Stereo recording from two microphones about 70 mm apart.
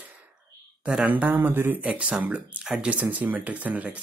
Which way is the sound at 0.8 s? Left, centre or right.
Centre.